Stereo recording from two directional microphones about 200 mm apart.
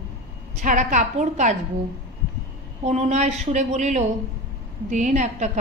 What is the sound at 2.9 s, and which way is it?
A woman's voice, 35° right (ahead or behind).